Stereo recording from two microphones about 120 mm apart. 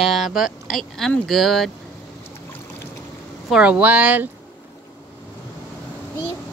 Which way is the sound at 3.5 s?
10° right (ahead or behind).